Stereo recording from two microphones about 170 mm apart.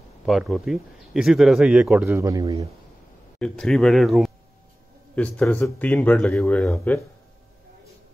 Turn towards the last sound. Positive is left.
turn(degrees=5)  # may be behind; listen again after turning